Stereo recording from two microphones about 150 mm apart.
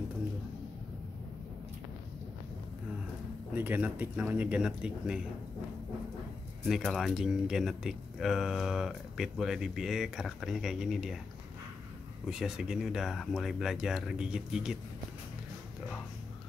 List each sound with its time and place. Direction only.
3.5 s speech: 10° right (ahead or behind)
6.6 s speech: centre (ahead or behind)
12.3 s speech: 5° right (ahead or behind)